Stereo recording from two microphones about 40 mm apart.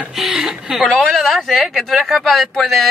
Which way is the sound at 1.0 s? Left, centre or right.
Centre.